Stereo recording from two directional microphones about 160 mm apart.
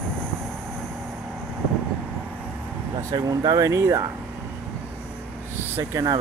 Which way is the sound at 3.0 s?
20° right (ahead or behind).